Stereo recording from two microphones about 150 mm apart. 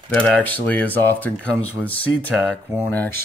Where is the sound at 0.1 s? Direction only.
10° left (ahead or behind).